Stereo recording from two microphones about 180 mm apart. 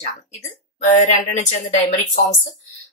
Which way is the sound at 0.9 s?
40° left (ahead or behind).